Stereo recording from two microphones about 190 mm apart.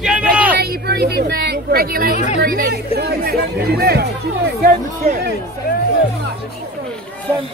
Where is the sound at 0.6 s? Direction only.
55° right (ahead or behind).